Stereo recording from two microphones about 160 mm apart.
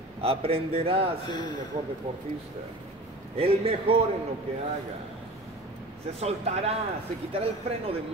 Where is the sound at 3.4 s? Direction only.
35° right (ahead or behind).